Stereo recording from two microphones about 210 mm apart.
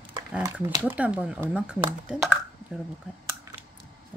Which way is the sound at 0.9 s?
5° right (ahead or behind).